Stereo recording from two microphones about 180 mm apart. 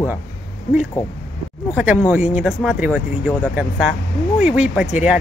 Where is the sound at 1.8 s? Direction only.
5° right (ahead or behind).